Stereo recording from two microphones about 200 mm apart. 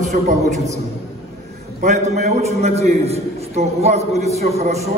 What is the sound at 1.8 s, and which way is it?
A man's voice, 35° right (ahead or behind).